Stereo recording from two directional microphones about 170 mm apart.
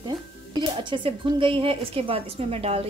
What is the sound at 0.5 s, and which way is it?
A woman's voice, 30° right (ahead or behind).